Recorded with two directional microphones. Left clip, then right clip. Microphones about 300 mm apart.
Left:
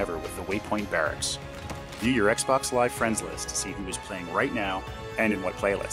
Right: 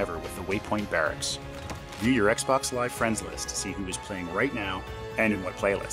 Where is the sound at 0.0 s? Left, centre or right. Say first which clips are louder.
Left 1 dB; centre.